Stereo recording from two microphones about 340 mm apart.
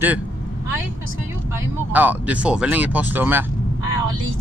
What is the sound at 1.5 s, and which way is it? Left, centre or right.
Speech, centre.